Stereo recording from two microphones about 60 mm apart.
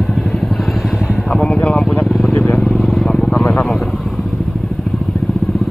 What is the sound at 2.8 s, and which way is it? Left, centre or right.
Vehicle, centre.